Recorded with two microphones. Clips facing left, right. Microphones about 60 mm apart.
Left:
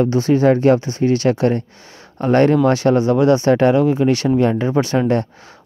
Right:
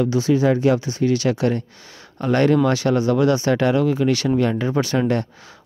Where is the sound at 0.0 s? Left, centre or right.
Left.